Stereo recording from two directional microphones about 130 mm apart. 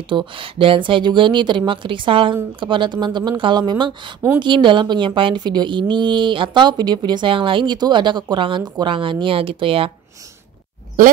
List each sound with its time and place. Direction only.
0.1 s a woman's voice: 40° right (ahead or behind)